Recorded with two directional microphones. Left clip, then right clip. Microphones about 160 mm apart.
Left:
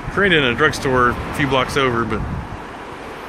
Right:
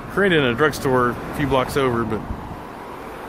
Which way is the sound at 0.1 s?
20° right (ahead or behind).